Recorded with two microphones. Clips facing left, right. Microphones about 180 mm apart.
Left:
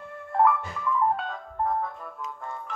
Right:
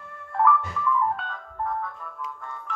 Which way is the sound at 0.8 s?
25° left (ahead or behind).